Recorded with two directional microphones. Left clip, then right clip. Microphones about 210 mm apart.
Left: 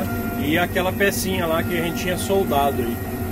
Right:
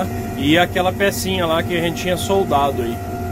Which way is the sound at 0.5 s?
20° right (ahead or behind).